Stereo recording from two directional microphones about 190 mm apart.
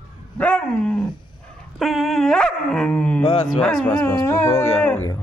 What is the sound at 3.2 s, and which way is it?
Speech, 20° left (ahead or behind).